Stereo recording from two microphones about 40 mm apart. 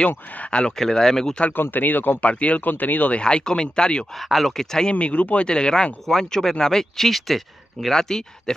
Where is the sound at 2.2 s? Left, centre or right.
Left.